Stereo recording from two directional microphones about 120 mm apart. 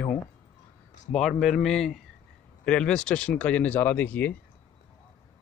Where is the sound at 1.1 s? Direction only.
Centre (ahead or behind).